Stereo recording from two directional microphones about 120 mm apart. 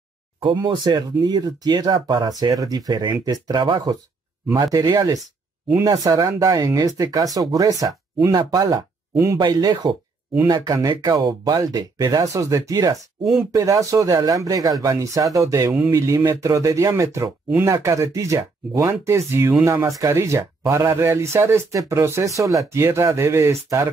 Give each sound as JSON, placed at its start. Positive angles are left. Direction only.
{"t": 0.4, "sound": "speech", "side_deg": -45}